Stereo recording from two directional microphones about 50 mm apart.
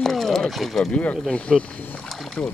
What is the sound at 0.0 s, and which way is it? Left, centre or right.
Speech, centre.